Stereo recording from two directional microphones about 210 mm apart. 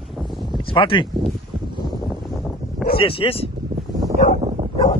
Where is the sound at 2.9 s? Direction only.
25° left (ahead or behind).